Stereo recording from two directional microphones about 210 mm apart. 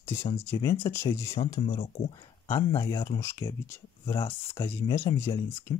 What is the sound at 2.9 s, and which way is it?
Speech, 25° left (ahead or behind).